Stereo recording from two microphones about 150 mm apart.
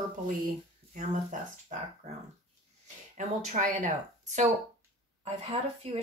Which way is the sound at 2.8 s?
55° right (ahead or behind).